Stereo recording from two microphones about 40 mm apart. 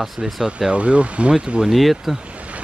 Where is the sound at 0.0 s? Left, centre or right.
Centre.